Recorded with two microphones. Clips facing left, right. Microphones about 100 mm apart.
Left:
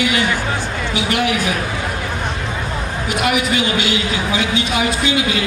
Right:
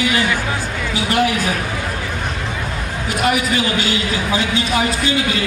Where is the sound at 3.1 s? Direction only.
35° right (ahead or behind).